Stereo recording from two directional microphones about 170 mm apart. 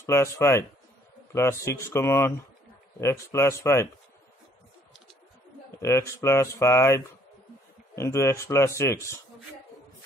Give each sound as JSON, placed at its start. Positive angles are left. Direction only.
{"t": 0.0, "sound": "a man's voice", "side_deg": 15}
{"t": 5.8, "sound": "a man's voice", "side_deg": 15}